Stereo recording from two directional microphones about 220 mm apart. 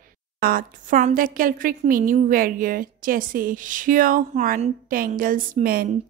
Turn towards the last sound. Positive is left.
turn(degrees=-40)  # may be behind; listen again after turning